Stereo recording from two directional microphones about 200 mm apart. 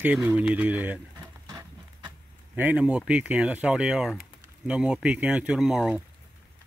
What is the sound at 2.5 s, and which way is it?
Speech, 5° right (ahead or behind).